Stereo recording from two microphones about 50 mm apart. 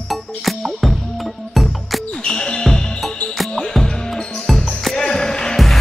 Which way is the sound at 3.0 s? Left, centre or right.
Centre.